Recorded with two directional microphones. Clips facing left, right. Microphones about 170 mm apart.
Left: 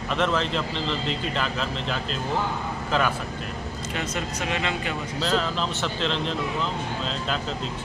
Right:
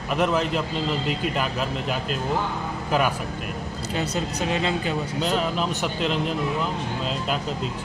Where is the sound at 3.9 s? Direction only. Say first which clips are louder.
Right 4 dB; 35° right (ahead or behind).